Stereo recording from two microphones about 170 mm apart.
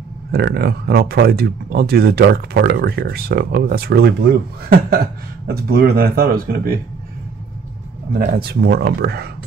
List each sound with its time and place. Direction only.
0.3 s speech: 70° right (ahead or behind)
8.1 s speech: 55° right (ahead or behind)